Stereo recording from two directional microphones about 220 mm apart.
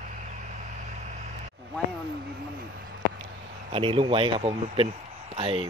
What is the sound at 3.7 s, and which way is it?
Speech, 25° right (ahead or behind).